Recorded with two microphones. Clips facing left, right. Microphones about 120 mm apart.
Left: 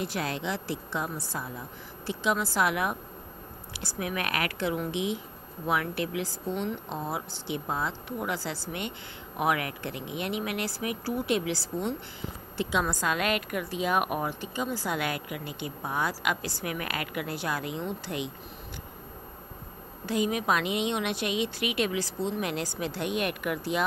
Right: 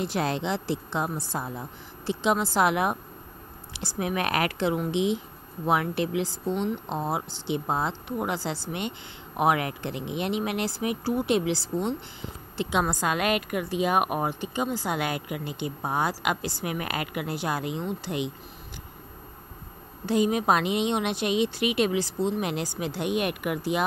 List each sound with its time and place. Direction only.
0.0 s a woman's voice: 25° right (ahead or behind)
20.1 s a woman's voice: 30° right (ahead or behind)